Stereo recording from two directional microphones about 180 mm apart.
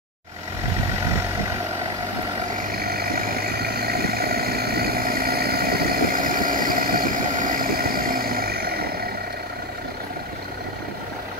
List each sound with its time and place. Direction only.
2.7 s vehicle: 60° right (ahead or behind)